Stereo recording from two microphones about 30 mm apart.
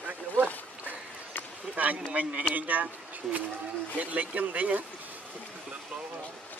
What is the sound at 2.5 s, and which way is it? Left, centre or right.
Speech, right.